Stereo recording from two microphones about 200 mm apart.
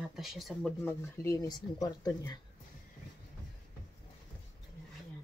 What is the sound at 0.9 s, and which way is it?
Speech, 15° left (ahead or behind).